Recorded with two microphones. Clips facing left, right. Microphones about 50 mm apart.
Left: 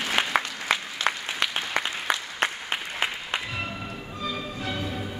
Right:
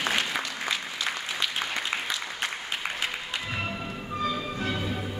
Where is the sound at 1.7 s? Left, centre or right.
Left.